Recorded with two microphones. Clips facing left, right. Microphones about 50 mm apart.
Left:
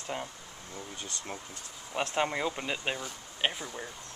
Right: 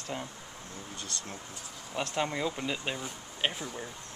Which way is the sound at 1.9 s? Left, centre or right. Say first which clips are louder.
Left 2 dB; centre.